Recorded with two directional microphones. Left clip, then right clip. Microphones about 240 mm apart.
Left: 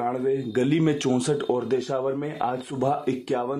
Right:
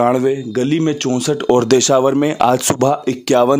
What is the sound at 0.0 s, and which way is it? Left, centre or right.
Speech, right.